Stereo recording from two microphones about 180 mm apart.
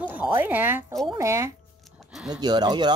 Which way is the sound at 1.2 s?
15° right (ahead or behind).